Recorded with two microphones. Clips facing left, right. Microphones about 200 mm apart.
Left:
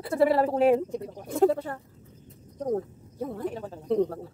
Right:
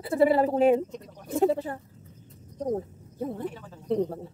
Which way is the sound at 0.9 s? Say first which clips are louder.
Left 7 dB; 30° left (ahead or behind).